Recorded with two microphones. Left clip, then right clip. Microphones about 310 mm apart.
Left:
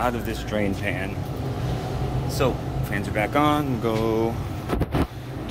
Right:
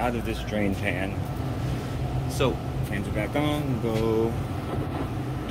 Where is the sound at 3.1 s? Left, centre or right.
Centre.